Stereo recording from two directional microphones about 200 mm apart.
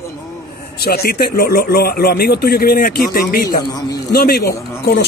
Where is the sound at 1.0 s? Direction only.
50° left (ahead or behind).